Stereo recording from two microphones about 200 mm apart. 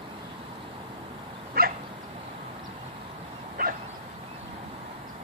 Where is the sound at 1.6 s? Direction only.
50° right (ahead or behind).